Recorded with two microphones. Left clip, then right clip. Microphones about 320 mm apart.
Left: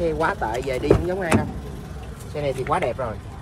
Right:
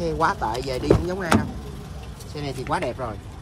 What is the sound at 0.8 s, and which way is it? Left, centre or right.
Speech, right.